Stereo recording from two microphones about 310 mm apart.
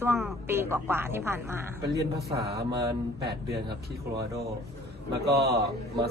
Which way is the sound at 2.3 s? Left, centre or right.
Centre.